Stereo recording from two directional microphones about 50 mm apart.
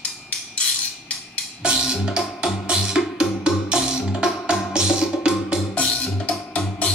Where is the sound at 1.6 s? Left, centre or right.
Centre.